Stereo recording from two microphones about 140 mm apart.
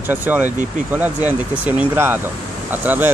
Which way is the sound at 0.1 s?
10° right (ahead or behind).